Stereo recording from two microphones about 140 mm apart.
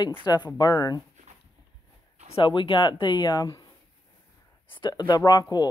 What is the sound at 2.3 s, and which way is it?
Speech, 35° left (ahead or behind).